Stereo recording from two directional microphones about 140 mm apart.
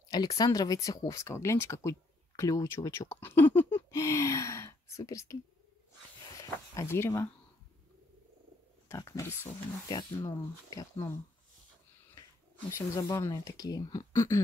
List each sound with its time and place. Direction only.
0.1 s speech: 25° left (ahead or behind)
6.7 s speech: 20° left (ahead or behind)
8.8 s speech: 20° left (ahead or behind)
12.5 s speech: 20° left (ahead or behind)